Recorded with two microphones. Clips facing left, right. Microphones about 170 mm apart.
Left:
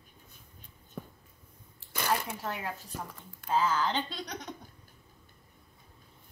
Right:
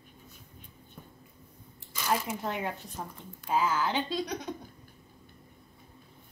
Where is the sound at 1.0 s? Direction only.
90° left.